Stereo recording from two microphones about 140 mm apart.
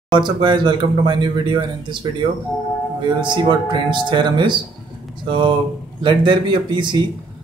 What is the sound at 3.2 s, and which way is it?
Speech, 35° right (ahead or behind).